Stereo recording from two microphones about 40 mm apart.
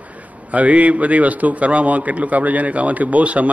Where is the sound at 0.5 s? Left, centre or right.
Right.